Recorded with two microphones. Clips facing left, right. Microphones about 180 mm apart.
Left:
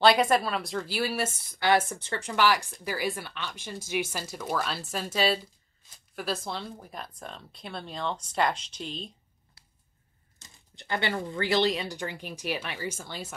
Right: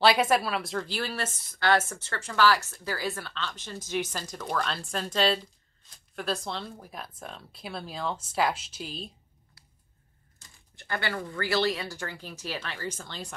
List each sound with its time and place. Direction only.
0.0 s a woman's voice: 5° right (ahead or behind)
9.6 s a sound: 25° left (ahead or behind)
10.8 s a woman's voice: 20° left (ahead or behind)